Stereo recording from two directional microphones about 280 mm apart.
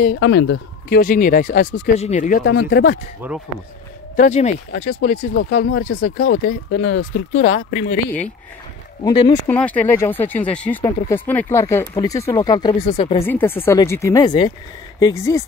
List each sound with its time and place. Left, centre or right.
0.0 s speech: left
3.2 s speech: centre
4.2 s speech: left
5.4 s speech: left
9.0 s speech: centre
9.5 s speech: centre
13.3 s speech: centre